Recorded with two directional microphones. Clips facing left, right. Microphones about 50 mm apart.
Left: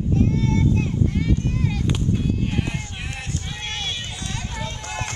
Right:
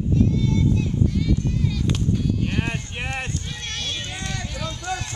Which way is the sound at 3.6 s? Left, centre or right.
Left.